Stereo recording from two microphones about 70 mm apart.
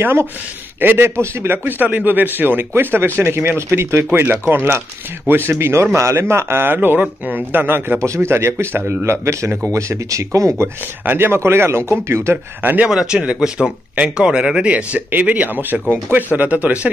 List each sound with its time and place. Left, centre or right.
0.0 s a man's voice: right
8.0 s speech: right
11.1 s speech: right
12.8 s a man's voice: centre